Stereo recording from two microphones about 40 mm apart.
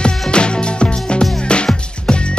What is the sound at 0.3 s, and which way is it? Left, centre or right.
Music, left.